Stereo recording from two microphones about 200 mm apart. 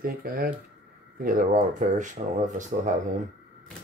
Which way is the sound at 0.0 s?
45° right (ahead or behind).